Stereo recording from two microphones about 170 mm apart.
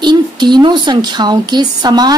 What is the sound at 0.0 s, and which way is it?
Speech, 25° right (ahead or behind).